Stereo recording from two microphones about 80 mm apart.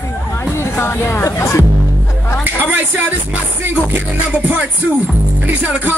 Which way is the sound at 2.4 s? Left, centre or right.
Right.